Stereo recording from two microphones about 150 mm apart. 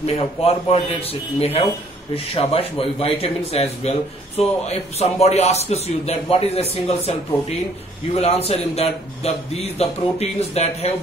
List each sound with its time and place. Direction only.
0.0 s a man's voice: 40° left (ahead or behind)